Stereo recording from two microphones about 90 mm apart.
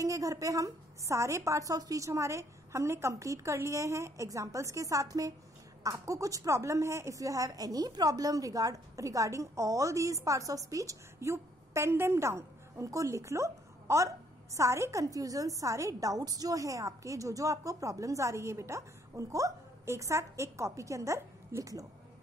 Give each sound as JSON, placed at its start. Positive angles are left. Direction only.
{"t": 0.0, "sound": "a woman's voice", "side_deg": -40}